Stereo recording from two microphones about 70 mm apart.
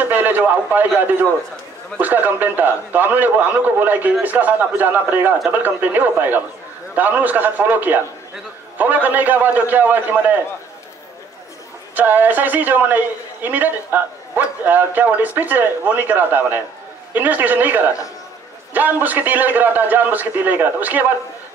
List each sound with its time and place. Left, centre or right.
0.0 s a man's voice: right
11.9 s a man's voice: right